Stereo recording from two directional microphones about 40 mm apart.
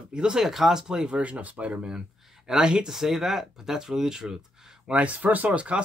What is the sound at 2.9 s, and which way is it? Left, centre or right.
Speech, centre.